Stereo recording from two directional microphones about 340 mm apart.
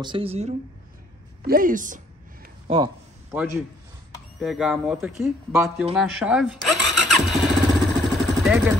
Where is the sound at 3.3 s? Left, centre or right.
Centre.